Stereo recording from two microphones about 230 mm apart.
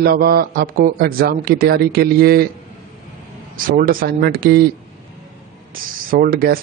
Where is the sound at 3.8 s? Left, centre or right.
Right.